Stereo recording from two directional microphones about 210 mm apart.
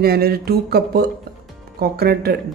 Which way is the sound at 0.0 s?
45° right (ahead or behind).